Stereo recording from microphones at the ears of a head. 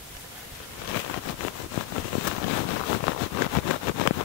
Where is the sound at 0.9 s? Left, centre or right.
Left.